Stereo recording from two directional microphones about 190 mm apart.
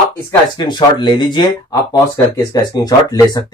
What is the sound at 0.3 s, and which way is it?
Speech, 20° left (ahead or behind).